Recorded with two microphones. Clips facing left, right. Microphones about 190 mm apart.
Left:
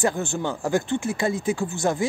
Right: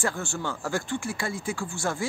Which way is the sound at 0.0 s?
20° left (ahead or behind).